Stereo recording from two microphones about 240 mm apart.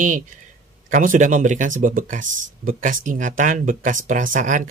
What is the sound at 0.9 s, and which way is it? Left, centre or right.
Speech, right.